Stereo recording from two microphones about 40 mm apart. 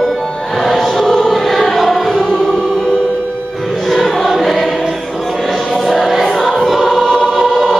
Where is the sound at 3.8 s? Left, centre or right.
Centre.